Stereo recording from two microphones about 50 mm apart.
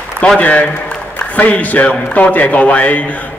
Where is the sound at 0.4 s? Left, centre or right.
Left.